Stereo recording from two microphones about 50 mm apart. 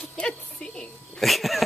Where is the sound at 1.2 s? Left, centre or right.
Centre.